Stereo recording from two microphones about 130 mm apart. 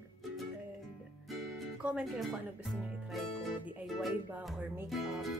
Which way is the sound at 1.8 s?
5° right (ahead or behind).